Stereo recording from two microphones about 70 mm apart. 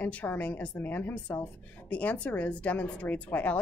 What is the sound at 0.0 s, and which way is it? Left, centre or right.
A woman's voice, left.